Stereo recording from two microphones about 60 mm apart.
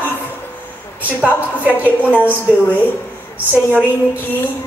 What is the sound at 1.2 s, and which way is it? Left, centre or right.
Speech, right.